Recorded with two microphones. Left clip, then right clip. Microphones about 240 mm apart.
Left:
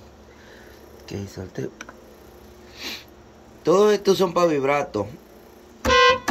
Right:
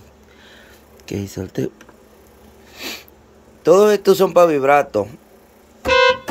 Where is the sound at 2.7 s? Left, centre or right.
Right.